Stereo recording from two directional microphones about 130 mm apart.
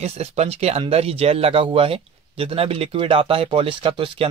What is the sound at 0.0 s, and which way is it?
Speech, 55° right (ahead or behind).